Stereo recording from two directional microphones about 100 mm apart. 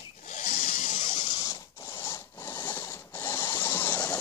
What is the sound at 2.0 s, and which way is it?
Rub, 20° left (ahead or behind).